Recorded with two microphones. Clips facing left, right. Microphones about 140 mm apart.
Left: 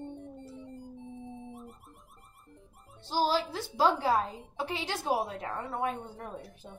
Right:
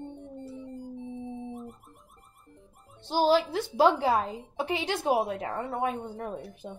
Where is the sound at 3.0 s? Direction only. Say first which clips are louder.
Right 5 dB; 20° right (ahead or behind).